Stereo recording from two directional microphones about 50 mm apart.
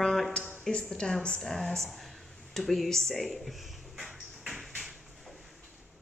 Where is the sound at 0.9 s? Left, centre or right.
Centre.